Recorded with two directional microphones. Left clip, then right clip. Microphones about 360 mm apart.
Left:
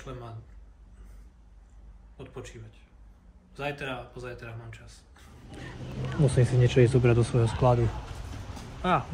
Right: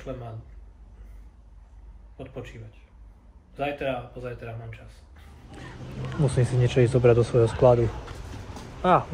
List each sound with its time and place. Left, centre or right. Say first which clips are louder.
2.1 s speech: right 4 dB; centre
3.5 s speech: right 6 dB; centre